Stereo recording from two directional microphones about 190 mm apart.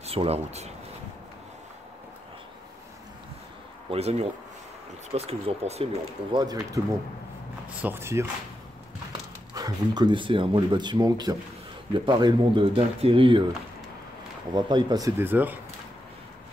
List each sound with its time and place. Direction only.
0.0 s speech: 30° right (ahead or behind)
3.9 s speech: 35° right (ahead or behind)
6.3 s speech: 20° right (ahead or behind)
7.8 s speech: 10° right (ahead or behind)
9.5 s speech: 20° right (ahead or behind)
14.5 s speech: 25° right (ahead or behind)